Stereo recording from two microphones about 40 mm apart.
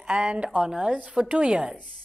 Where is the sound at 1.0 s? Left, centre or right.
Right.